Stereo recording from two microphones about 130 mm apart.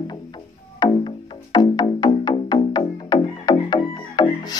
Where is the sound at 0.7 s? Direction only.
35° left (ahead or behind).